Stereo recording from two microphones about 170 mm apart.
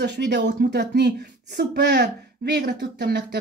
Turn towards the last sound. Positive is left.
turn(degrees=-70)  # may be behind; listen again after turning